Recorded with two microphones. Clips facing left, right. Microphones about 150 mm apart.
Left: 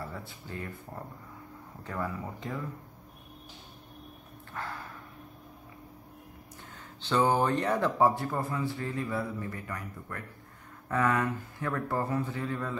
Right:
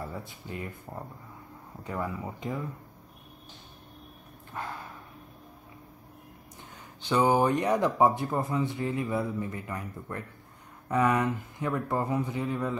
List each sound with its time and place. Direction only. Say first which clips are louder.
0.1 s speech: right 2 dB; 20° right (ahead or behind)
1.8 s speech: right 2 dB; 15° right (ahead or behind)
4.6 s speech: right 2 dB; 15° right (ahead or behind)
7.0 s speech: right 2 dB; 15° right (ahead or behind)